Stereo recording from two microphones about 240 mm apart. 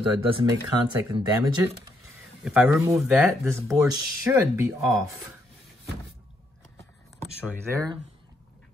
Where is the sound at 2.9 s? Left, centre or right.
Centre.